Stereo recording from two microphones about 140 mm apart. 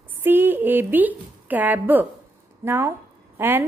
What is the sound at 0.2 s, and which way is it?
A woman's voice, 15° right (ahead or behind).